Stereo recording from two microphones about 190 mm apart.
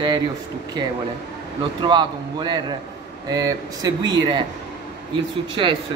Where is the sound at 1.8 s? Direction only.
25° right (ahead or behind).